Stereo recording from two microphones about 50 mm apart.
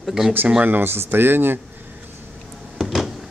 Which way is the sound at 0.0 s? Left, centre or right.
Centre.